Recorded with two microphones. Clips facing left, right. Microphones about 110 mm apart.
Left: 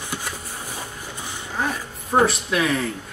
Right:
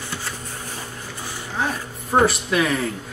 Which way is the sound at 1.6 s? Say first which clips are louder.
Right 1 dB; centre (ahead or behind).